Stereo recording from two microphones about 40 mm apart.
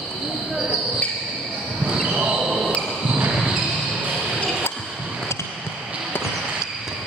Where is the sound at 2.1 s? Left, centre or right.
Right.